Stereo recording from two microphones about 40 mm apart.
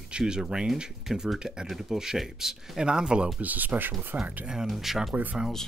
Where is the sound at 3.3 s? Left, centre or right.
Right.